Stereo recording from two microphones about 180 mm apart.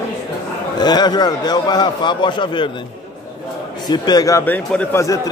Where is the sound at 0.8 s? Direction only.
25° left (ahead or behind).